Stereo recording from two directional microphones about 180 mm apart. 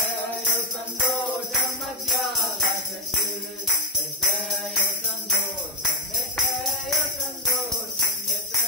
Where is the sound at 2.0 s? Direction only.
Centre (ahead or behind).